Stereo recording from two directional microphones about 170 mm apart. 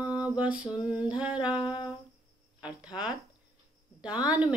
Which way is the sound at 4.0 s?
5° right (ahead or behind).